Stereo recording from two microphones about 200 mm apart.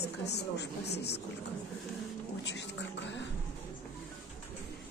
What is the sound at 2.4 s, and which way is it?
Speech, 60° left (ahead or behind).